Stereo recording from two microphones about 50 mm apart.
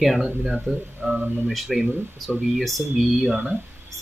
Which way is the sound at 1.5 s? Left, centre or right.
Centre.